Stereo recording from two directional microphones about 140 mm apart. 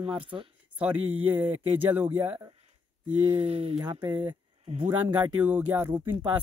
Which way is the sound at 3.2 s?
45° right (ahead or behind).